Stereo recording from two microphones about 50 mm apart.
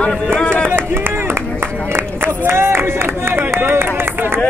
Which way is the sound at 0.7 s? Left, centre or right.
Right.